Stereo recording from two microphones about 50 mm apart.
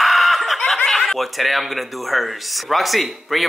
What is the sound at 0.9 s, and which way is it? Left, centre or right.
Speech, centre.